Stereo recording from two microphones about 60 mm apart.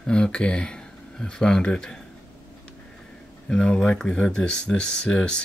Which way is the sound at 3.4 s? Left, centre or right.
Centre.